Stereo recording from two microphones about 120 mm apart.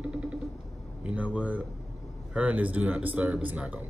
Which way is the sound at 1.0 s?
10° right (ahead or behind).